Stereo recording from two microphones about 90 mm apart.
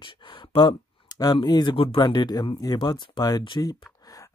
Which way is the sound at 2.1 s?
50° left (ahead or behind).